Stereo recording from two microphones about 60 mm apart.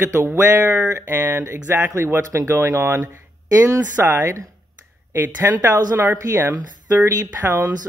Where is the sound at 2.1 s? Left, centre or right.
Right.